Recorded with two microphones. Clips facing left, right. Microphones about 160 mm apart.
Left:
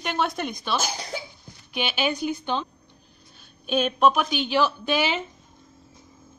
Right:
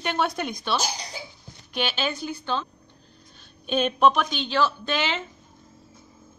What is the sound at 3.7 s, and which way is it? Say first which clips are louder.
Speech: even; centre (ahead or behind).